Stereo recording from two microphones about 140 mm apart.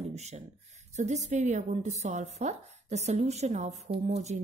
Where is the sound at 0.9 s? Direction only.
55° right (ahead or behind).